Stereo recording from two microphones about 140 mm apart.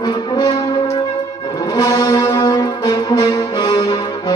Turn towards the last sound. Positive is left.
turn(degrees=30)  # may be behind; listen again after turning